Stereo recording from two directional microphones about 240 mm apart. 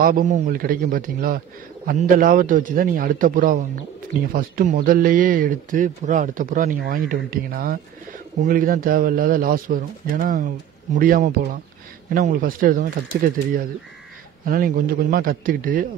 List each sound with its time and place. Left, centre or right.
0.0 s speech: right